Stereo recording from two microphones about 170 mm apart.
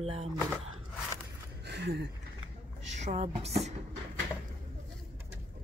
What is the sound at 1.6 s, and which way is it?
Speech, 85° right.